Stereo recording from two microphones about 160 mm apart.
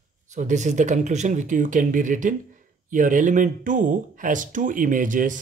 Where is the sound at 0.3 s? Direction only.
50° right (ahead or behind).